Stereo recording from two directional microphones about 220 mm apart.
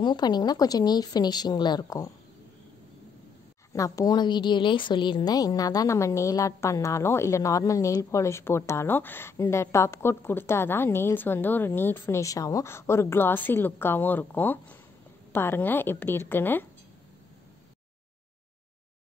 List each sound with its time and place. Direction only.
0.0 s a woman's voice: 20° left (ahead or behind)
3.7 s a woman's voice: 15° left (ahead or behind)